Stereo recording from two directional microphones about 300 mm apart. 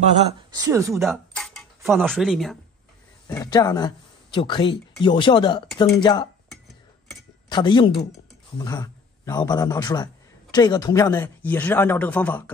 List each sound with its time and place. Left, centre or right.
0.3 s speech: centre
1.0 s speech: centre
3.3 s speech: centre
7.4 s a man's voice: centre